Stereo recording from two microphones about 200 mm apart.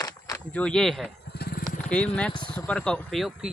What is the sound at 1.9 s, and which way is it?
Speech, 5° left (ahead or behind).